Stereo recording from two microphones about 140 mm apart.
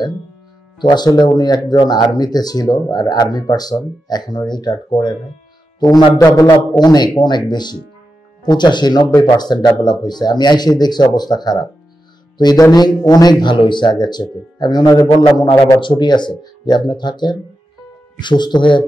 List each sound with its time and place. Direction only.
0.7 s speech: 30° left (ahead or behind)